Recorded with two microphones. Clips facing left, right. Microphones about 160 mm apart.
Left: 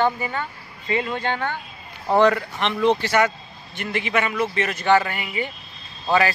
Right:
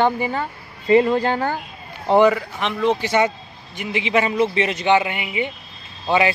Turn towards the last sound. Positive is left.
turn(degrees=-20)  # may be behind; listen again after turning